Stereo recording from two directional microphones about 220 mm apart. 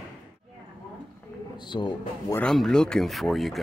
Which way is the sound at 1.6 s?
20° left (ahead or behind).